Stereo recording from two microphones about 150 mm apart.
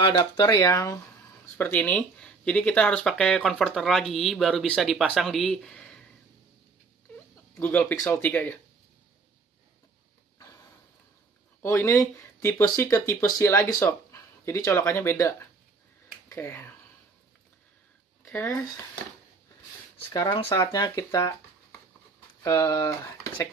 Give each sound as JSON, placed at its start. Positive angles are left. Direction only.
{"t": 0.0, "sound": "speech", "side_deg": 30}
{"t": 1.6, "sound": "speech", "side_deg": 10}
{"t": 7.5, "sound": "speech", "side_deg": 15}
{"t": 11.6, "sound": "speech", "side_deg": 20}
{"t": 18.2, "sound": "speech", "side_deg": 20}
{"t": 20.1, "sound": "speech", "side_deg": 25}
{"t": 22.4, "sound": "speech", "side_deg": 25}